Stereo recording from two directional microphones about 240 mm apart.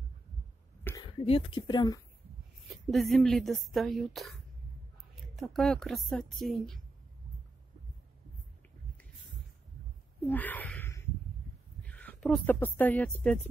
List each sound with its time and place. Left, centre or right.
0.8 s speech: centre
2.7 s a woman's voice: centre
10.2 s a sound: centre
11.8 s speech: centre